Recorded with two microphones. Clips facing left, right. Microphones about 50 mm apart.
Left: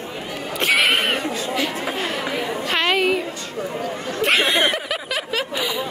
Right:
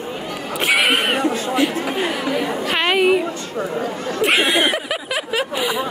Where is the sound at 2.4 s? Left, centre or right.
Centre.